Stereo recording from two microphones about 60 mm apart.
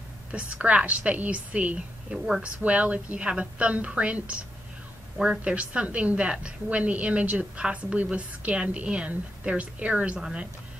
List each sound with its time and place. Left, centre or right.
0.3 s a woman's voice: centre
2.1 s speech: centre
2.4 s a woman's voice: right